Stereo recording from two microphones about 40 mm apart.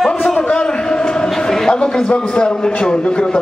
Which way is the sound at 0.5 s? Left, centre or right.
Left.